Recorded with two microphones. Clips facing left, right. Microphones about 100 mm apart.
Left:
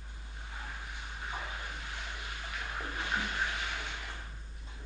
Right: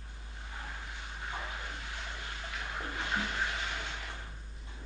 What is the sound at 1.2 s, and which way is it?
Vehicle, 15° left (ahead or behind).